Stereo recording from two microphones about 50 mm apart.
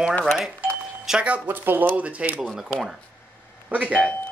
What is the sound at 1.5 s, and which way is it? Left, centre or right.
Speech, right.